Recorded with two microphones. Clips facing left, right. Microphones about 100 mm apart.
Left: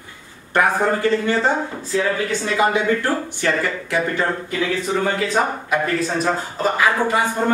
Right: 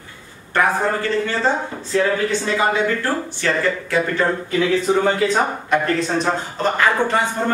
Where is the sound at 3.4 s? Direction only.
15° left (ahead or behind).